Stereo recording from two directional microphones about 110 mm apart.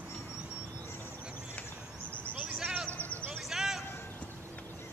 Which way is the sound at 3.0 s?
15° left (ahead or behind).